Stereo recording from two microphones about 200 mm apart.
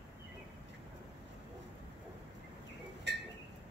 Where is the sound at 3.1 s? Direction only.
60° right (ahead or behind).